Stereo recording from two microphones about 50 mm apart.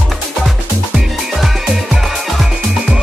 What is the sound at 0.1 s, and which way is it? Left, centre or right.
Music, centre.